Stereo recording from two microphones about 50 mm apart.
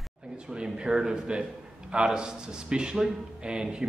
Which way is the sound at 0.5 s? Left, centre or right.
Centre.